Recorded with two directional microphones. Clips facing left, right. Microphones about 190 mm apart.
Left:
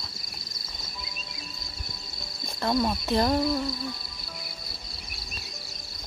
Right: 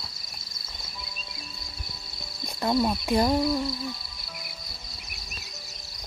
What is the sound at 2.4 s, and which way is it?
Speech, 10° right (ahead or behind).